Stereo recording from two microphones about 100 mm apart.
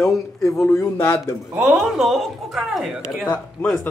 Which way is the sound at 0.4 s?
30° left (ahead or behind).